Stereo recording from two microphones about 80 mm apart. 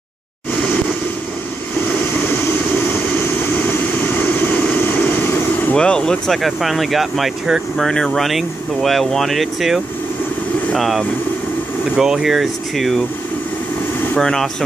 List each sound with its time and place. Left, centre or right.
1.9 s vehicle: left
5.8 s speech: centre
14.1 s speech: centre